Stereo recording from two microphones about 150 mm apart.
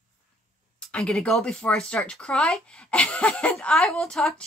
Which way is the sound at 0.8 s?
5° left (ahead or behind).